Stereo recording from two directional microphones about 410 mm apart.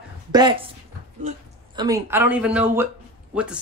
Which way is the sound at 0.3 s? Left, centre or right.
Centre.